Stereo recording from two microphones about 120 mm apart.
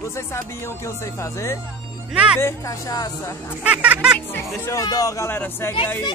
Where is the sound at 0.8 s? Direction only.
25° left (ahead or behind).